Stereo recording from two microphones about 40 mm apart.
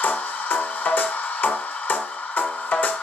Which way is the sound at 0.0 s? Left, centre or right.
Left.